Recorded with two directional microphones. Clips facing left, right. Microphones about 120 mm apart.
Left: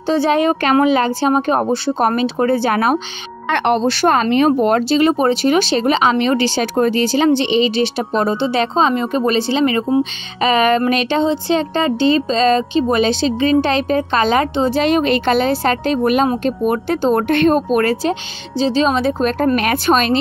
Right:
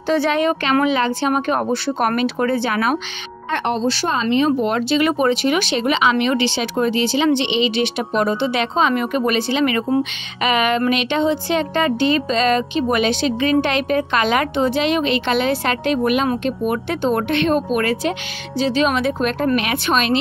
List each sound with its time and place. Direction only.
0.1 s speech: 35° left (ahead or behind)
3.4 s speech: 70° left (ahead or behind); by 14.8 s 30° left (ahead or behind)
14.8 s speech: 40° left (ahead or behind)